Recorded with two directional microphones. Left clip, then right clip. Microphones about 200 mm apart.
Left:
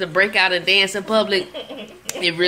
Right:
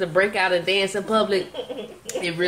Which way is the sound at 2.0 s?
25° left (ahead or behind).